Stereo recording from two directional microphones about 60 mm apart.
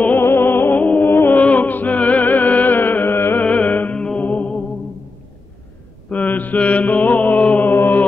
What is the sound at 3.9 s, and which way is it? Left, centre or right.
Music, centre.